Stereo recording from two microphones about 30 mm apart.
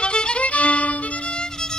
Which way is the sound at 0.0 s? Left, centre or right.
Left.